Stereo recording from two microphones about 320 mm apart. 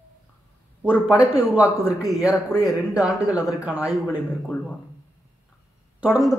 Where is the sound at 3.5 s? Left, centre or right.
Centre.